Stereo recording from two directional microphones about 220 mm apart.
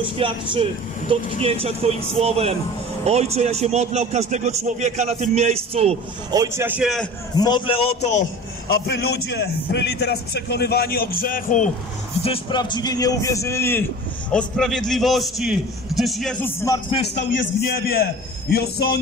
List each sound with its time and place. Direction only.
0.0 s a man's voice: 25° right (ahead or behind)
6.3 s a man's voice: 15° right (ahead or behind)
7.3 s speech: 20° left (ahead or behind)
8.8 s a man's voice: 50° left (ahead or behind)
12.3 s a man's voice: 20° left (ahead or behind); by 16.5 s centre (ahead or behind)
16.6 s a man's voice: 15° left (ahead or behind)
17.7 s a man's voice: 40° left (ahead or behind)